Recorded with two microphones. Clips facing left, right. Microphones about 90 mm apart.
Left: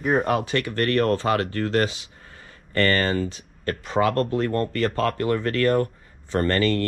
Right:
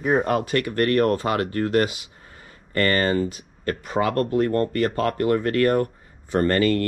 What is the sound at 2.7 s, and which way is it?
Speech, 35° right (ahead or behind).